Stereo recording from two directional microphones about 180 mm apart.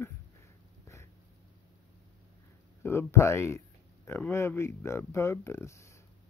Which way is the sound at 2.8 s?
15° left (ahead or behind).